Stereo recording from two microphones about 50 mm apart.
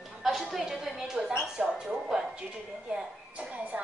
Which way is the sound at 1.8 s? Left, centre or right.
Centre.